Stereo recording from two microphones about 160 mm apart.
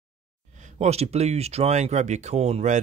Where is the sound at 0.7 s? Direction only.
40° right (ahead or behind).